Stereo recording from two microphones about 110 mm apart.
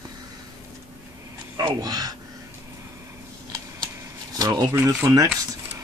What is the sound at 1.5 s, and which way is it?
Speech, 40° right (ahead or behind).